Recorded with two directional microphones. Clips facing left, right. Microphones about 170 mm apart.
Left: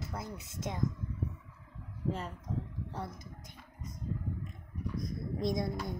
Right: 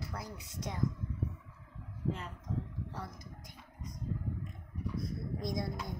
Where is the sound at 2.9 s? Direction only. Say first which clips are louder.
Left 3 dB; 25° left (ahead or behind).